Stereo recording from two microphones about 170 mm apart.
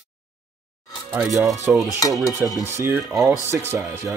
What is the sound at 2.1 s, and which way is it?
Speech, centre (ahead or behind).